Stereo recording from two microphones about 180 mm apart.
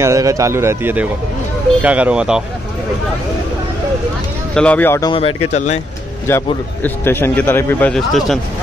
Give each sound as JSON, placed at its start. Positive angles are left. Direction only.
{"t": 0.0, "sound": "speech", "side_deg": -15}
{"t": 4.6, "sound": "a man's voice", "side_deg": 10}
{"t": 5.1, "sound": "speech", "side_deg": 35}
{"t": 6.2, "sound": "a man's voice", "side_deg": 15}